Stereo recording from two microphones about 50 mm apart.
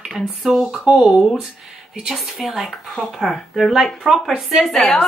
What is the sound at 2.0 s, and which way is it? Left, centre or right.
A woman's voice, centre.